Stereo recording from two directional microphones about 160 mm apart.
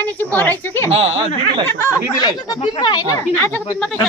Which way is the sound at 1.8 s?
20° left (ahead or behind).